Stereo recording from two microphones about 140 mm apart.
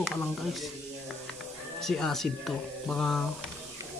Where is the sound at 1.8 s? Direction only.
Centre (ahead or behind).